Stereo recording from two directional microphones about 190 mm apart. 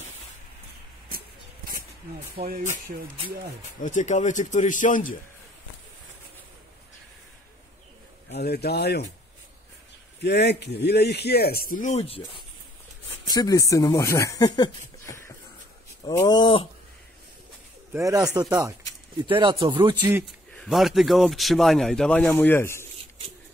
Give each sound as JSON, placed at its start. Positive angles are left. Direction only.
{"t": 2.3, "sound": "speech", "side_deg": -50}
{"t": 3.8, "sound": "speech", "side_deg": 40}
{"t": 8.3, "sound": "speech", "side_deg": 60}
{"t": 10.2, "sound": "speech", "side_deg": 60}
{"t": 13.3, "sound": "speech", "side_deg": 20}
{"t": 17.9, "sound": "speech", "side_deg": -15}
{"t": 20.5, "sound": "a man's voice", "side_deg": 0}